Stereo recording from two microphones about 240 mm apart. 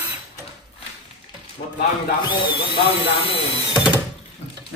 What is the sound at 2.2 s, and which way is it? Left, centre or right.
Speech, centre.